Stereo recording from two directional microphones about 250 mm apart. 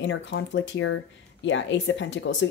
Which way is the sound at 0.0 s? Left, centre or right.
Left.